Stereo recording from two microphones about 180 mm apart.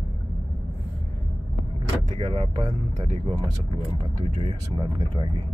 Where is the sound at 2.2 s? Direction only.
35° right (ahead or behind).